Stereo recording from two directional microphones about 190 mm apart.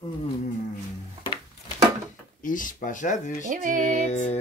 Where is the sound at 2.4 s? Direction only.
45° left (ahead or behind).